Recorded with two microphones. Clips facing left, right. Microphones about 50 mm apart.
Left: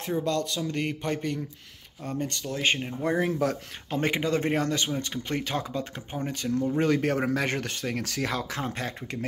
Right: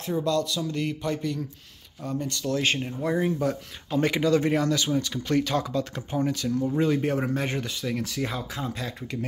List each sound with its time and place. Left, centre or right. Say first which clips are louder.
0.0 s speech: right 2 dB; left
2.4 s speech: right 2 dB; centre
3.2 s speech: right 1 dB; left
3.9 s speech: right 4 dB; left
6.2 s speech: right 2 dB; left
6.8 s speech: even; left